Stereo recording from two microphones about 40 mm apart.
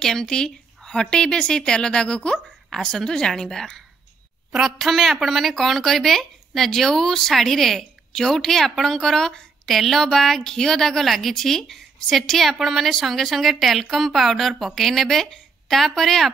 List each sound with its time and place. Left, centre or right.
0.0 s a woman's voice: centre
2.7 s a woman's voice: centre
4.5 s a woman's voice: centre
4.7 s a woman's voice: centre